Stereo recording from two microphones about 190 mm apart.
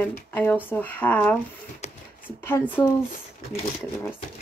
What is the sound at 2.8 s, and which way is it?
Speech, 20° left (ahead or behind).